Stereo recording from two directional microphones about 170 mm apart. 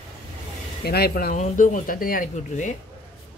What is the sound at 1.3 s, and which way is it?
A woman's voice, 45° left (ahead or behind).